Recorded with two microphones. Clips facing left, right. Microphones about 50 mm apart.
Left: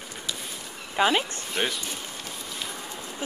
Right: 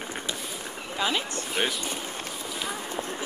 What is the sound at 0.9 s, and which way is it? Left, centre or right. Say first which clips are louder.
Speech: left 5 dB; left.